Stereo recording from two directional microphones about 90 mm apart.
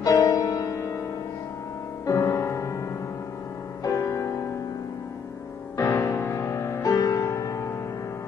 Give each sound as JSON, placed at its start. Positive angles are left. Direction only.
{"t": 0.0, "sound": "music", "side_deg": 40}
{"t": 2.0, "sound": "music", "side_deg": 35}
{"t": 3.8, "sound": "music", "side_deg": 35}
{"t": 5.8, "sound": "music", "side_deg": 35}